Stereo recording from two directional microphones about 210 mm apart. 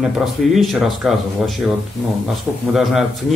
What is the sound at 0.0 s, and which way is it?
Speech, centre (ahead or behind).